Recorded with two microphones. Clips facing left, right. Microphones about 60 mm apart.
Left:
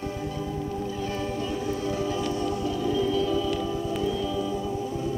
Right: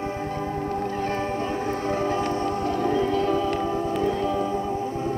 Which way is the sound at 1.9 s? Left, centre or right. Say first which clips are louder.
Right 5 dB; right.